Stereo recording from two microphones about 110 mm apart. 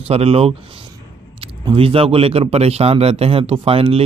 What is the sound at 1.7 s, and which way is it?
A man's voice, 55° right (ahead or behind).